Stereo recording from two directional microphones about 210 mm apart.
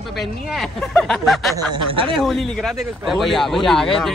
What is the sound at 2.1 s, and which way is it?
Speech, centre (ahead or behind).